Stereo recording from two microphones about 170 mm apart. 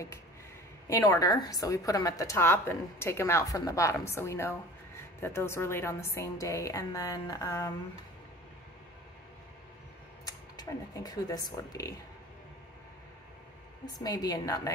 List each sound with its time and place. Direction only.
0.8 s speech: 20° left (ahead or behind)
10.2 s speech: 20° left (ahead or behind)
13.9 s a woman's voice: 20° left (ahead or behind)